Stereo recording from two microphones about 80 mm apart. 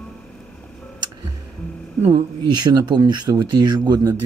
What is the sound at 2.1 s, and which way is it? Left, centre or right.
Speech, right.